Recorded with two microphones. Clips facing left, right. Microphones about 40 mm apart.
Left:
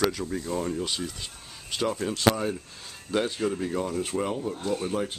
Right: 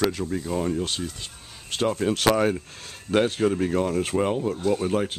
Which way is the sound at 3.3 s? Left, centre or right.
Right.